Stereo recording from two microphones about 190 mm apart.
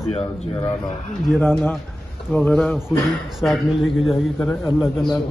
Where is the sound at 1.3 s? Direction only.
Centre (ahead or behind).